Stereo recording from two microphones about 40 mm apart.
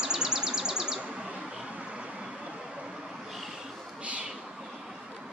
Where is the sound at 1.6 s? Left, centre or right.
Right.